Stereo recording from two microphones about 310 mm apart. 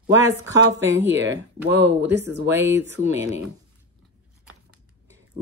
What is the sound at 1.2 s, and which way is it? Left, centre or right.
Speech, right.